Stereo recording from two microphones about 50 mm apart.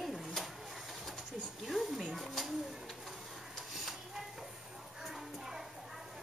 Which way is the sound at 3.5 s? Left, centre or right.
Centre.